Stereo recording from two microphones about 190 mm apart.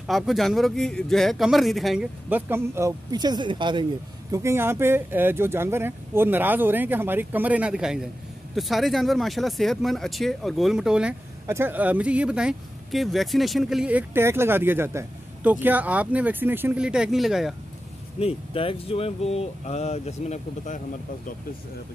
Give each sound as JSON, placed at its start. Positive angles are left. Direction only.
{"t": 0.0, "sound": "speech", "side_deg": 0}
{"t": 4.3, "sound": "speech", "side_deg": -15}
{"t": 18.2, "sound": "speech", "side_deg": 30}